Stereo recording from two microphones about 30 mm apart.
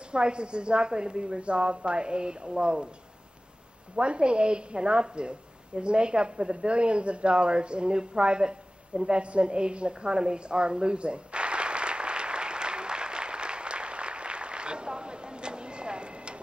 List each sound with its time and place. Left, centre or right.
0.1 s a woman's voice: right
3.9 s a woman's voice: right
5.8 s a sound: right